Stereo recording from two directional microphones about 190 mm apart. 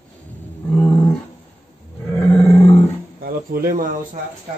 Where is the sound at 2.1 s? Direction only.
15° left (ahead or behind).